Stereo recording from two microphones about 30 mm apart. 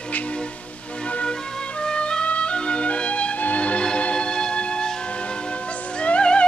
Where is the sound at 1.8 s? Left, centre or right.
Left.